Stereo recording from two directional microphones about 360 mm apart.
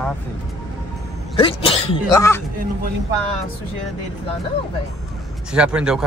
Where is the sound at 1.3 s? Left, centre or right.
Centre.